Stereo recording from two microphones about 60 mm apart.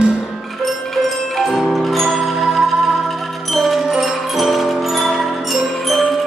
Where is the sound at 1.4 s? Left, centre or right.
Centre.